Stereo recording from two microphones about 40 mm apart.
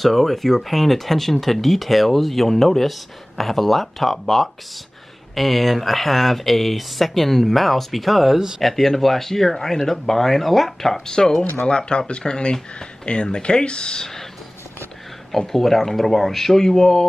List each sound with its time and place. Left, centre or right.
0.0 s speech: centre
8.6 s speech: centre
15.3 s speech: centre